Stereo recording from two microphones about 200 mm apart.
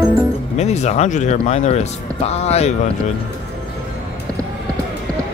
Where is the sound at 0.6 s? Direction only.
35° left (ahead or behind).